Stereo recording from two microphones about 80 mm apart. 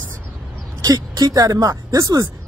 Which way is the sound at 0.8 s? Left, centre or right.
Right.